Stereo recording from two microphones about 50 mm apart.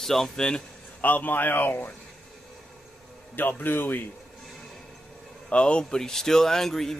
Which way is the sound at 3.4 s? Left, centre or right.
Left.